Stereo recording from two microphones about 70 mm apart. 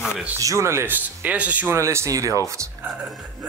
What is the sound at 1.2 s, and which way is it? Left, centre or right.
Speech, right.